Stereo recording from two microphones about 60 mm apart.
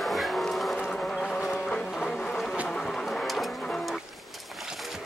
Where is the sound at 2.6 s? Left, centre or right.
Centre.